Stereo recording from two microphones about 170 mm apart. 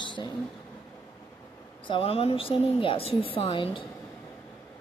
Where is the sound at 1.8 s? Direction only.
30° left (ahead or behind).